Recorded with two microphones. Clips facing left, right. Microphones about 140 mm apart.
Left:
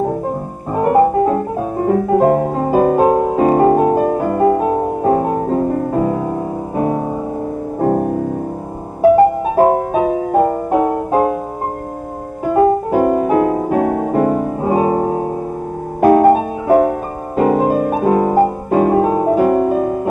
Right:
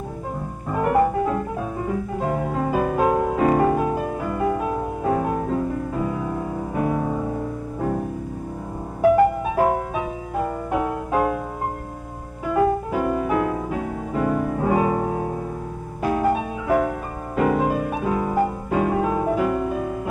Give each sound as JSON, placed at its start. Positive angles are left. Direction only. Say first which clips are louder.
{"t": 0.7, "sound": "music", "louder": "left 7 dB", "side_deg": 30}
{"t": 7.8, "sound": "music", "louder": "left 10 dB", "side_deg": 50}
{"t": 9.0, "sound": "music", "louder": "left 6 dB", "side_deg": 30}
{"t": 10.0, "sound": "music", "louder": "left 12 dB", "side_deg": 55}
{"t": 12.4, "sound": "music", "louder": "left 7 dB", "side_deg": 35}
{"t": 13.7, "sound": "music", "louder": "left 11 dB", "side_deg": 55}
{"t": 14.2, "sound": "music", "louder": "left 6 dB", "side_deg": 35}
{"t": 16.0, "sound": "music", "louder": "left 12 dB", "side_deg": 55}